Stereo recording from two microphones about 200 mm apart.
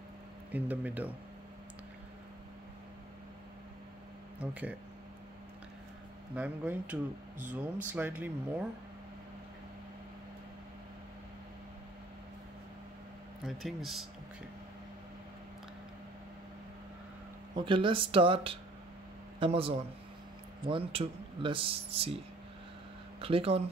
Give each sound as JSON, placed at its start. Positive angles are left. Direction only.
{"t": 0.5, "sound": "speech", "side_deg": -10}
{"t": 4.4, "sound": "speech", "side_deg": -5}
{"t": 6.3, "sound": "speech", "side_deg": -5}
{"t": 13.5, "sound": "speech", "side_deg": 0}
{"t": 17.6, "sound": "speech", "side_deg": -25}
{"t": 23.2, "sound": "speech", "side_deg": -30}